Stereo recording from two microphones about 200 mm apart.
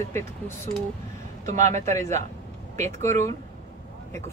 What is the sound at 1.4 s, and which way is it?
A man's voice, 35° right (ahead or behind).